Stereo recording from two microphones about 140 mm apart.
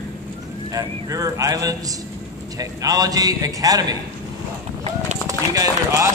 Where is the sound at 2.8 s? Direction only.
25° right (ahead or behind).